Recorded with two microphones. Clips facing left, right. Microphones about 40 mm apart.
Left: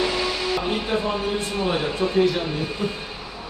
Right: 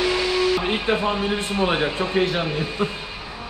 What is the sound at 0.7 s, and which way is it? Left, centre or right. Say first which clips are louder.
Speech: right 2 dB; right.